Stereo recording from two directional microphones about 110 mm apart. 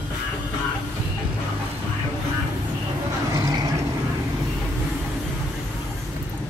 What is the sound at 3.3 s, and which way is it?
Vehicle, 30° right (ahead or behind).